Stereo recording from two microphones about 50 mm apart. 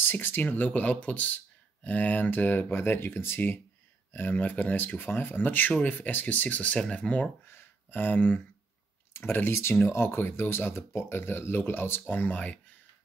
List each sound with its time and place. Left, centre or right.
0.0 s speech: left
5.7 s speech: left
7.4 s a sound: left
9.1 s speech: left